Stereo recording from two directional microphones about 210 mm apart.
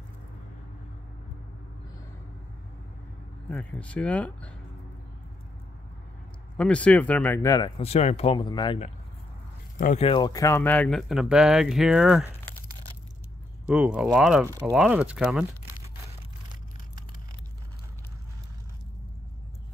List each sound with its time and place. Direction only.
3.4 s speech: 5° left (ahead or behind)
6.5 s speech: 5° left (ahead or behind)
7.8 s speech: 30° left (ahead or behind)
9.8 s speech: 40° left (ahead or behind)
10.0 s speech: 20° left (ahead or behind); by 12.3 s 5° right (ahead or behind)
13.7 s speech: 5° right (ahead or behind)